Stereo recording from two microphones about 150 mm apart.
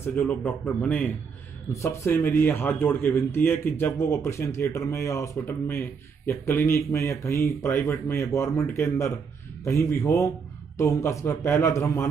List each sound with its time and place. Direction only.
0.0 s a man's voice: 10° left (ahead or behind)